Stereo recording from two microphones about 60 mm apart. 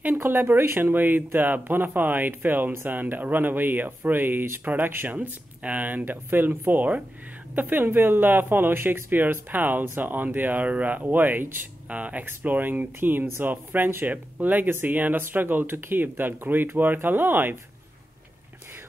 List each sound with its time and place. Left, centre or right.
0.0 s speech: right
0.7 s speech: right
5.1 s speech: right
12.3 s speech: right